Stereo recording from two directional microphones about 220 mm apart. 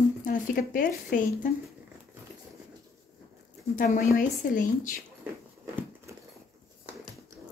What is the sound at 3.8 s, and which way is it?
A woman's voice, 35° left (ahead or behind).